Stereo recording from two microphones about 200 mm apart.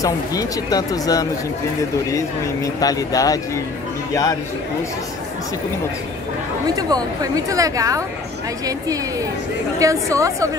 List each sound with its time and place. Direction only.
0.0 s speech: 15° left (ahead or behind)
6.7 s speech: 20° right (ahead or behind)
9.8 s speech: 15° right (ahead or behind)